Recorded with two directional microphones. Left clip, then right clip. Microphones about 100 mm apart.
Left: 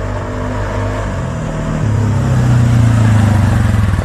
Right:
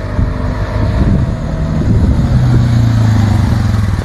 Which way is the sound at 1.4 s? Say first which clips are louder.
Even; 45° left (ahead or behind).